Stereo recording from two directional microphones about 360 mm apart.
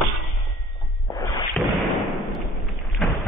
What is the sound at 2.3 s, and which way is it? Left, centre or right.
Thump, centre.